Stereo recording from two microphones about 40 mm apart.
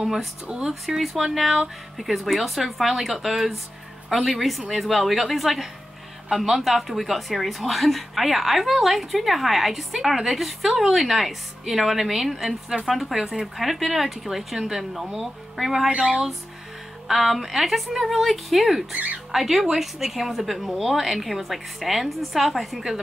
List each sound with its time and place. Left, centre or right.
0.0 s speech: centre
0.5 s speech: right
0.8 s a woman's voice: centre
17.1 s a woman's voice: centre